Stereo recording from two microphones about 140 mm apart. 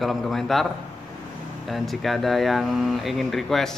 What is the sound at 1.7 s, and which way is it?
Speech, centre (ahead or behind).